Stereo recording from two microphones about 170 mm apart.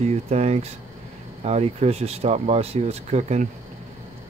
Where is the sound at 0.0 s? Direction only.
40° right (ahead or behind).